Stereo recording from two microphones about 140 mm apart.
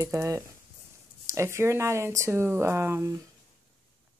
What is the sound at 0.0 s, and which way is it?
Speech, 25° right (ahead or behind).